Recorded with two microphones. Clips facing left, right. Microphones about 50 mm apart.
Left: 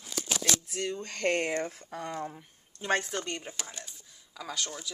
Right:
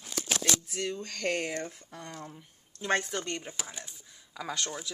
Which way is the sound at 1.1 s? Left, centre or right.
Left.